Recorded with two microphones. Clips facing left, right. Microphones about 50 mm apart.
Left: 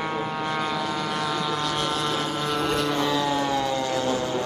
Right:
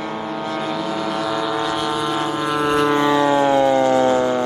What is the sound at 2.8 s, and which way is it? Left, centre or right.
Vehicle, right.